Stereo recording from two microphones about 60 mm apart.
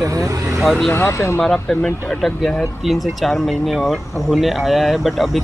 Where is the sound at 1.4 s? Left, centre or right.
Centre.